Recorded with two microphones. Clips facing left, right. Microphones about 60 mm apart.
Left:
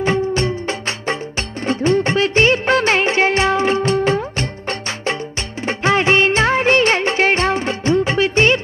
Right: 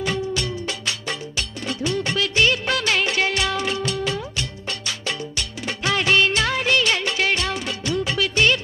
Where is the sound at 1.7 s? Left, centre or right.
Left.